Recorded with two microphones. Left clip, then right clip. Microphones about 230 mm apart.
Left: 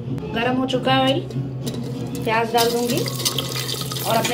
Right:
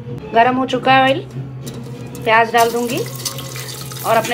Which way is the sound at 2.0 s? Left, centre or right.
Right.